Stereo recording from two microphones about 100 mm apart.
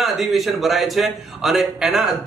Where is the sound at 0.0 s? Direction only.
Centre (ahead or behind).